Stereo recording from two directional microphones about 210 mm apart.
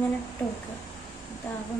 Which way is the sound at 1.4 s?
10° left (ahead or behind).